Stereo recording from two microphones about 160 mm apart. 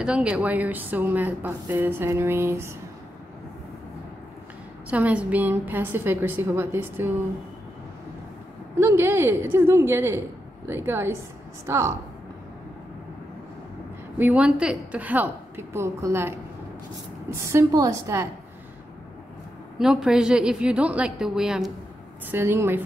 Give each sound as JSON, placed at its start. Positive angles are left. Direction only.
{"t": 0.0, "sound": "speech", "side_deg": -5}
{"t": 4.8, "sound": "speech", "side_deg": -10}
{"t": 8.7, "sound": "speech", "side_deg": -15}
{"t": 14.1, "sound": "a woman's voice", "side_deg": -10}
{"t": 19.8, "sound": "a woman's voice", "side_deg": -5}
{"t": 22.3, "sound": "speech", "side_deg": -15}